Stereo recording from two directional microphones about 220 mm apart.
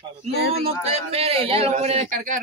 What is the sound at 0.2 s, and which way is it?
A man's voice, 30° right (ahead or behind).